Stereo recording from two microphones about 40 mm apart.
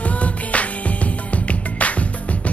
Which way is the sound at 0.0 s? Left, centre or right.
Left.